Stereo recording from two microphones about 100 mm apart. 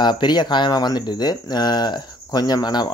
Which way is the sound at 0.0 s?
45° left (ahead or behind).